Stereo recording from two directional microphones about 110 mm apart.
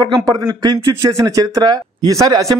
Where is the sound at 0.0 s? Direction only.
35° right (ahead or behind).